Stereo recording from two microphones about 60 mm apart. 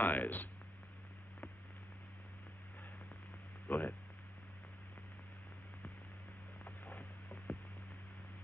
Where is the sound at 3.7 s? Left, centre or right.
Left.